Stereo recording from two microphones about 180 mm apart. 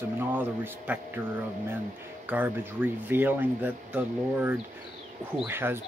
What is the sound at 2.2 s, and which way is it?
Speech, 10° right (ahead or behind).